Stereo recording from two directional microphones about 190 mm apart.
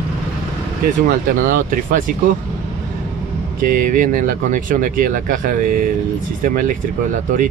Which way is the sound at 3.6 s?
45° right (ahead or behind).